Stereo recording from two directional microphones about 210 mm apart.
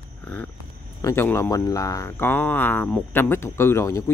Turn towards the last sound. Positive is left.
turn(degrees=15)  # may be behind; listen again after turning